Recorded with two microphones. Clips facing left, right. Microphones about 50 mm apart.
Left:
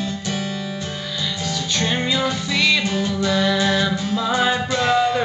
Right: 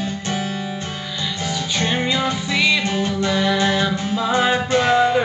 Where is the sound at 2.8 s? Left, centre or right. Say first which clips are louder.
Right 1 dB; right.